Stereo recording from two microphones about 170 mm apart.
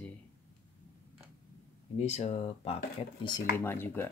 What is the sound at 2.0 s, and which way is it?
Speech, 40° left (ahead or behind).